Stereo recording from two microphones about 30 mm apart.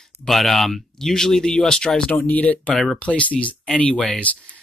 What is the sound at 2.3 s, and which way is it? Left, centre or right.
Speech, left.